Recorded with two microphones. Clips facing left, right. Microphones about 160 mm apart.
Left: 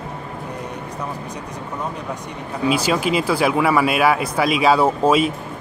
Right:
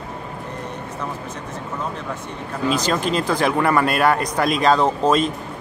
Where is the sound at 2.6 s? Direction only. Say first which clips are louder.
Left 2 dB; 10° left (ahead or behind).